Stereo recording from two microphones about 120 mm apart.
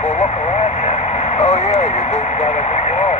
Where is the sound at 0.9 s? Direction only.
60° left (ahead or behind).